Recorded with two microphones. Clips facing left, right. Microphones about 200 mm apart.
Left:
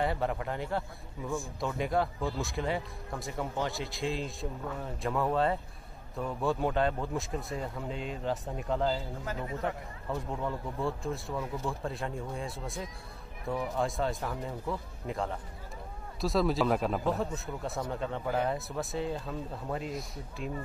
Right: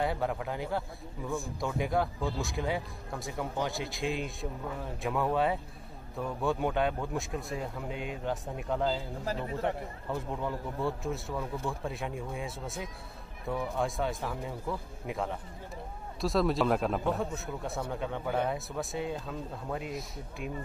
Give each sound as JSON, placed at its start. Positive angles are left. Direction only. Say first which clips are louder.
{"t": 0.0, "sound": "a man's voice", "louder": "even", "side_deg": 0}
{"t": 9.2, "sound": "speech", "louder": "right 2 dB", "side_deg": -30}
{"t": 10.1, "sound": "a man's voice", "louder": "even", "side_deg": 0}